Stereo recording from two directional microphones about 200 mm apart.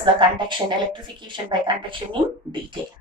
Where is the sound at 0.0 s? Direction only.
25° right (ahead or behind).